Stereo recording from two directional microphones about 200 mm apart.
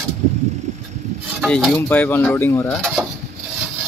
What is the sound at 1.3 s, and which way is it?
Speech, centre (ahead or behind).